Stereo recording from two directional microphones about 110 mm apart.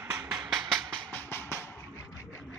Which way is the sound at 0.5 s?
Centre (ahead or behind).